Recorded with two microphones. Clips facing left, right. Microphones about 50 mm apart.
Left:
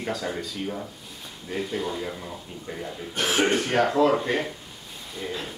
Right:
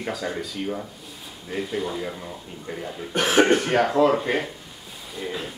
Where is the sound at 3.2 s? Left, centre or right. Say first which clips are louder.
Right 6 dB; right.